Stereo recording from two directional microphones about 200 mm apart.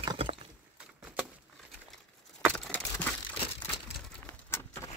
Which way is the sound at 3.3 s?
25° left (ahead or behind).